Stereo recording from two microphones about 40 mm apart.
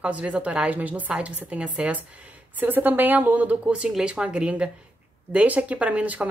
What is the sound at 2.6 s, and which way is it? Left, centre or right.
A woman's voice, right.